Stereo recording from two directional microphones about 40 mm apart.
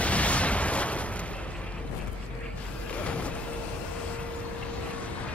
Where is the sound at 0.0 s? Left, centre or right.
Left.